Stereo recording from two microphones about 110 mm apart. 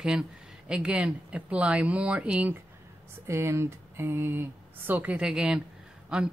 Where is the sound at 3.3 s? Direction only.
25° right (ahead or behind).